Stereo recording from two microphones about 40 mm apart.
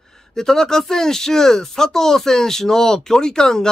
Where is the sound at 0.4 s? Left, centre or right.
Centre.